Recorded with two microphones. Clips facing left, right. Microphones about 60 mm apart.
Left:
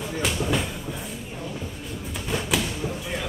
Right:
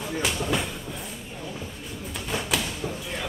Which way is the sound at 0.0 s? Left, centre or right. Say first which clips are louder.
Left 1 dB; centre.